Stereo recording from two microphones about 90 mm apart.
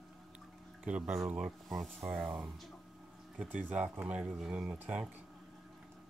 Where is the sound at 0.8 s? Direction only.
10° right (ahead or behind).